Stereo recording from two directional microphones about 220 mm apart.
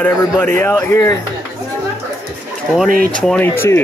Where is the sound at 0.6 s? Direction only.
10° left (ahead or behind).